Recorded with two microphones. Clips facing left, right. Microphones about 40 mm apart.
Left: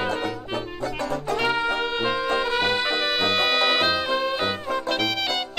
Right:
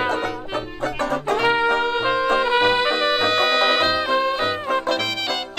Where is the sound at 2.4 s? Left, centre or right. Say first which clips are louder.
Right 5 dB; right.